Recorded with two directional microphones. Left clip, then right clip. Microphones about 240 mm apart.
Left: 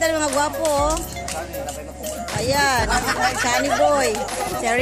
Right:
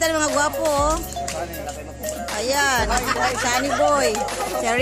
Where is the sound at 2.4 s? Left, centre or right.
Centre.